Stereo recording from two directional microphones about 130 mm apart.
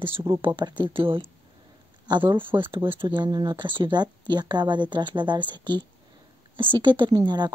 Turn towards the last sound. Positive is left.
turn(degrees=-35)  # may be behind; listen again after turning